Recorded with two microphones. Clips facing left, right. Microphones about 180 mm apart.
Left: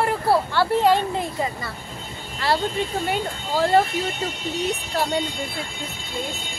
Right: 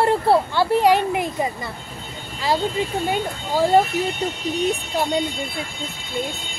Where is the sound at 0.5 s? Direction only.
15° right (ahead or behind).